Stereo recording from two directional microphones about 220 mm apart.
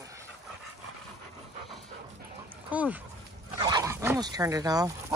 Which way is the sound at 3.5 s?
20° right (ahead or behind).